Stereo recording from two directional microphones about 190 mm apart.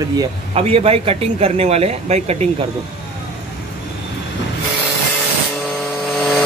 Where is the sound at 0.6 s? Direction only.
30° right (ahead or behind).